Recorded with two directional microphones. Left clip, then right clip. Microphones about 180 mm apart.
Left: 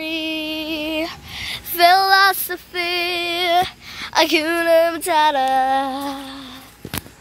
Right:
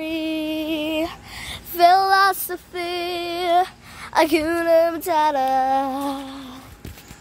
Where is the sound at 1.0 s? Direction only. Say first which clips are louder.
Left 4 dB; 25° right (ahead or behind).